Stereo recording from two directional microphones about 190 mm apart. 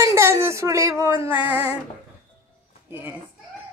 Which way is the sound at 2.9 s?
10° right (ahead or behind).